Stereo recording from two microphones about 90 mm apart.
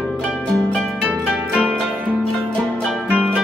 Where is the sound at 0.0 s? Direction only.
Centre (ahead or behind).